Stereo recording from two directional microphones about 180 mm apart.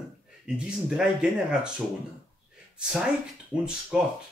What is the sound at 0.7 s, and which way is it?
Speech, 5° right (ahead or behind).